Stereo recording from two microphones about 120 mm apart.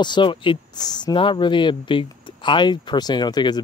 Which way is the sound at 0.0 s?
40° left (ahead or behind).